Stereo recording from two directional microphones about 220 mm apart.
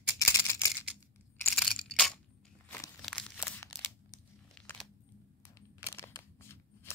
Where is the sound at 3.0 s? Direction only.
5° left (ahead or behind).